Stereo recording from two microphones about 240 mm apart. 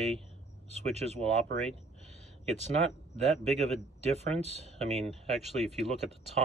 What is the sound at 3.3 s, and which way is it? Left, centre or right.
Speech, right.